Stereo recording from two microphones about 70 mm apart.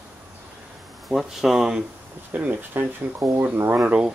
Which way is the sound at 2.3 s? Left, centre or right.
Right.